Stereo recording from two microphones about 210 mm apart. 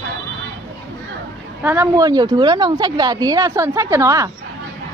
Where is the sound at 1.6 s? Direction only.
10° right (ahead or behind).